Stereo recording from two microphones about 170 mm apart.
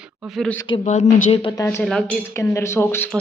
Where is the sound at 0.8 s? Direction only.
45° left (ahead or behind).